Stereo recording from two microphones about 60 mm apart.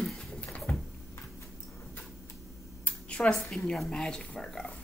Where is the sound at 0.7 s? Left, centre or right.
Left.